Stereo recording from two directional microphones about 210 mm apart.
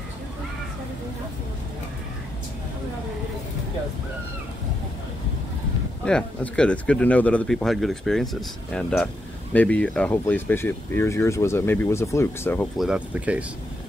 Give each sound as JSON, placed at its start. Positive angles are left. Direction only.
{"t": 6.0, "sound": "speech", "side_deg": 5}
{"t": 12.7, "sound": "speech", "side_deg": -5}